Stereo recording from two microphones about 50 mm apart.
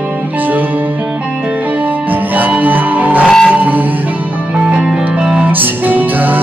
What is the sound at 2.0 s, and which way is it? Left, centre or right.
Music, right.